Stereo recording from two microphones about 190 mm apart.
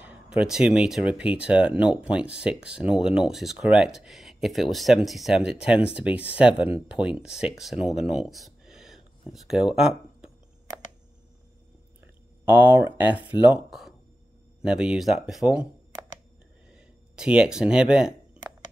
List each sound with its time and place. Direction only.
0.0 s speech: 5° right (ahead or behind)
12.4 s speech: 10° right (ahead or behind)
16.7 s a sound: 5° right (ahead or behind)